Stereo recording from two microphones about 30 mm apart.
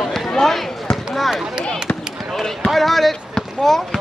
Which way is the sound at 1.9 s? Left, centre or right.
Left.